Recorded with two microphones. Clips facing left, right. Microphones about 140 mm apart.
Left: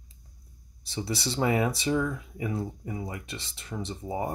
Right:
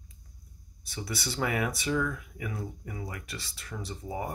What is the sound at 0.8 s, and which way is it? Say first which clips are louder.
Speech: left 5 dB; 25° left (ahead or behind).